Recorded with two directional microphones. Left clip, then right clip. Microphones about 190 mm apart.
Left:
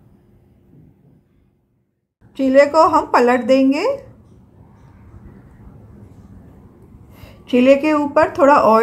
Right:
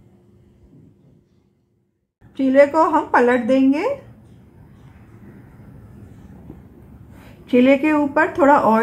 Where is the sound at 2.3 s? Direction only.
15° left (ahead or behind).